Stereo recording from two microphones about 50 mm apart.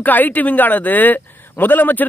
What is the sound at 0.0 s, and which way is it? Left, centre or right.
A man's voice, left.